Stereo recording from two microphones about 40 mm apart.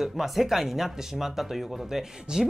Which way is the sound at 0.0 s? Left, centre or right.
Centre.